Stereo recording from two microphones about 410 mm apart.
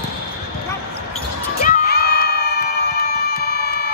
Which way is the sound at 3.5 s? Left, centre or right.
Right.